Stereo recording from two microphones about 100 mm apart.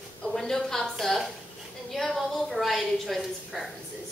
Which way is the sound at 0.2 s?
5° left (ahead or behind).